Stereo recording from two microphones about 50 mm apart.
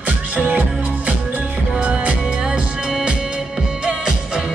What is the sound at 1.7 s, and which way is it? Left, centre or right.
Music, right.